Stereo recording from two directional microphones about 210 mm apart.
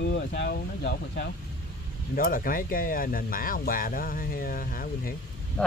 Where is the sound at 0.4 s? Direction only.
60° left (ahead or behind).